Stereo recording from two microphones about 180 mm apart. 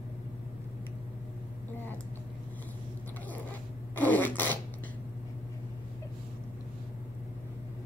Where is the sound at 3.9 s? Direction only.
10° left (ahead or behind).